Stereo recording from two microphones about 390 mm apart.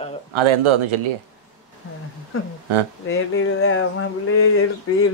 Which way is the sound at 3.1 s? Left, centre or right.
Left.